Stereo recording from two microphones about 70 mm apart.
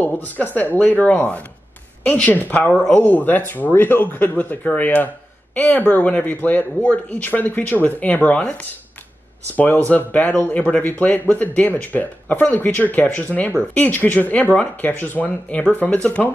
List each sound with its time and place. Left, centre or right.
0.0 s speech: left
9.8 s speech: left